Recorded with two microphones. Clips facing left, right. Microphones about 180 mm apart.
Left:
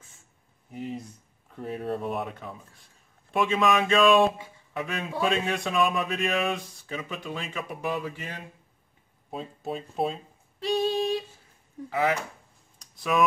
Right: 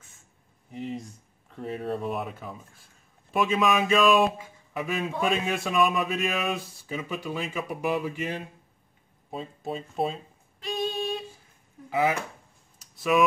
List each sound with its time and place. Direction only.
0.7 s speech: centre (ahead or behind)
8.0 s a sound: 20° right (ahead or behind)
9.3 s speech: centre (ahead or behind)
10.6 s female singing: 30° left (ahead or behind)
11.9 s chopping: 10° right (ahead or behind)
12.7 s a sound: 5° right (ahead or behind)